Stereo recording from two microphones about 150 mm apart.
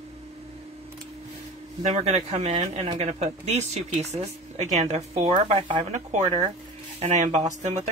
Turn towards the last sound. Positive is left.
turn(degrees=-50)  # may be behind; listen again after turning